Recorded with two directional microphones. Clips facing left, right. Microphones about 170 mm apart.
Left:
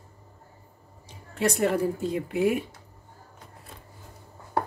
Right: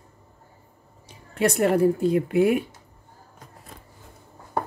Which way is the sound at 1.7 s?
65° right (ahead or behind).